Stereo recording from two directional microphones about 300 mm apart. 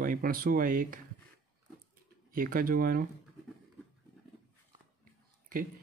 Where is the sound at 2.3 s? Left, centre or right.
Right.